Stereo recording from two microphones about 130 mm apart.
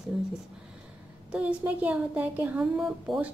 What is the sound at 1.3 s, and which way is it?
Speech, 10° right (ahead or behind).